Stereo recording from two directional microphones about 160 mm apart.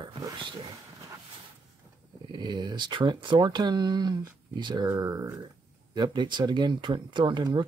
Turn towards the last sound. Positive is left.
turn(degrees=-30)  # may be behind; listen again after turning